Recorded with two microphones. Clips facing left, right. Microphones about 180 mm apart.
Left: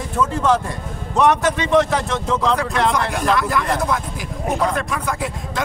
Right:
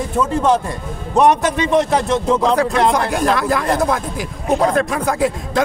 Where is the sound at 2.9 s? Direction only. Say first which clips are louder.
Right 3 dB; 35° right (ahead or behind).